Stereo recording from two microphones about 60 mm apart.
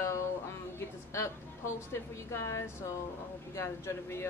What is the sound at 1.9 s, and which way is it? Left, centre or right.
Speech, left.